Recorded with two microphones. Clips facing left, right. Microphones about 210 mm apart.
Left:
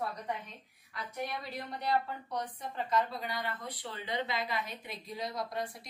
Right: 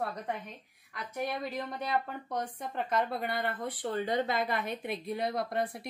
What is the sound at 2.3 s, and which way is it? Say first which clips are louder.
Speech: right 2 dB; 55° right (ahead or behind).